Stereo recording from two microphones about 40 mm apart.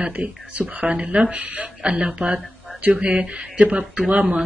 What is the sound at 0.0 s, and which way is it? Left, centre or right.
Speech, right.